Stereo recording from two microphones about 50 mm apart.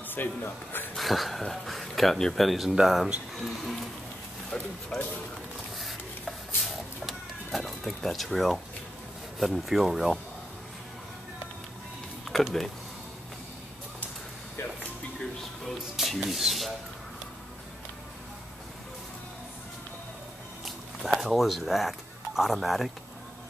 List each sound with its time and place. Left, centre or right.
0.1 s a man's voice: left
0.9 s speech: centre
4.5 s speech: centre
5.8 s a sound: centre
9.4 s speech: centre
15.6 s music: centre
16.2 s speech: centre
20.6 s a sound: centre